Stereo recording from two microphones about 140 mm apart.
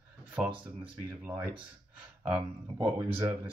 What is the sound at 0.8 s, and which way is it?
Speech, 15° right (ahead or behind).